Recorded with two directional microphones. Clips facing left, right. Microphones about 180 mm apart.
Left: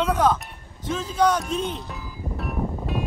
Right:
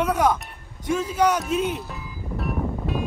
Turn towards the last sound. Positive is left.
turn(degrees=0)  # may be behind; listen again after turning